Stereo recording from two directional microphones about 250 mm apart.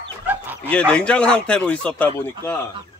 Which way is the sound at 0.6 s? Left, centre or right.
Centre.